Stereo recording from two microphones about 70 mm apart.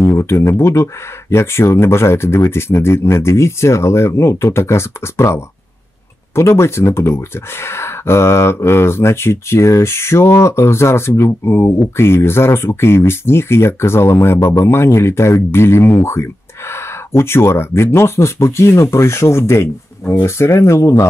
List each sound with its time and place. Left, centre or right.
0.0 s speech: left